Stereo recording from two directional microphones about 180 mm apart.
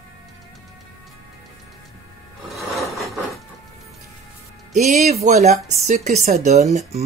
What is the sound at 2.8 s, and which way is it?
Wood, centre (ahead or behind).